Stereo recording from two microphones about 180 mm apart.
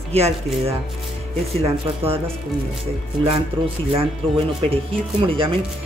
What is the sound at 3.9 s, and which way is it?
Speech, 30° right (ahead or behind).